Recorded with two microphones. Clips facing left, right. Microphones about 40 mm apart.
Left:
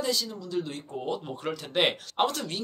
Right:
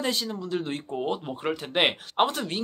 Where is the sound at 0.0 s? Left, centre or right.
Right.